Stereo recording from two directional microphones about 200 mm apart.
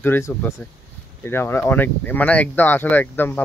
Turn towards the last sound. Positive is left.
turn(degrees=10)  # may be behind; listen again after turning